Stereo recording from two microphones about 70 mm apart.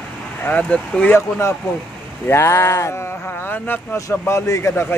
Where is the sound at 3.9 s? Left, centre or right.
Left.